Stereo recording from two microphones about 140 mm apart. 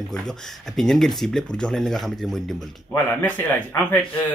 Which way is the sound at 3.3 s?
15° left (ahead or behind).